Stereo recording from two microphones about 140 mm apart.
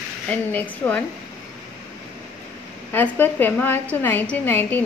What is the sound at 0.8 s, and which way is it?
Speech, 25° left (ahead or behind).